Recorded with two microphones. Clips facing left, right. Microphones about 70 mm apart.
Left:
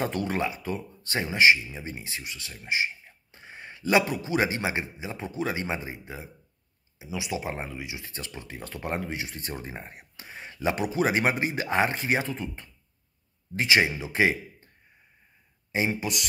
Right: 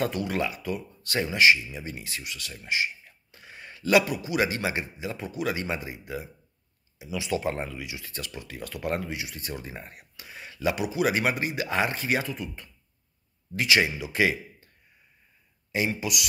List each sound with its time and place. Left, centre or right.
0.0 s speech: left
7.2 s speech: centre
15.7 s speech: left